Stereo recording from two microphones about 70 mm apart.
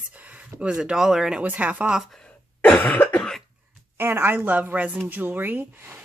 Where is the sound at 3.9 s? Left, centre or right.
Right.